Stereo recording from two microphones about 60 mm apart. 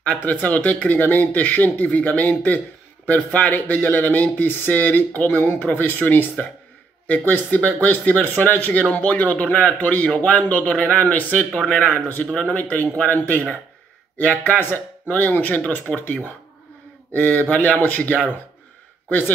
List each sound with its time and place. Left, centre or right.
0.0 s speech: left
12.3 s speech: centre; by 19.3 s left